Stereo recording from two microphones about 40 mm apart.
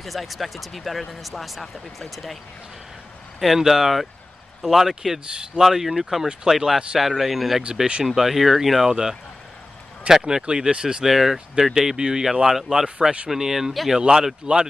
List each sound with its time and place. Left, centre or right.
0.0 s speech: centre
3.3 s speech: centre
7.6 s speech: right
8.1 s speech: centre
10.0 s speech: centre
10.4 s speech: right
11.1 s speech: centre